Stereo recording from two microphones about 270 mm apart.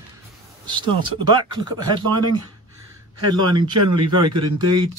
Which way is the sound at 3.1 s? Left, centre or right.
Right.